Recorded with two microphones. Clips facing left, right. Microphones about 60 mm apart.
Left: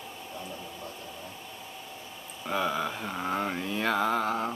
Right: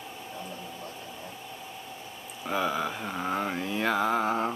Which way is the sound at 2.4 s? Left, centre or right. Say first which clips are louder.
Right 1 dB; centre.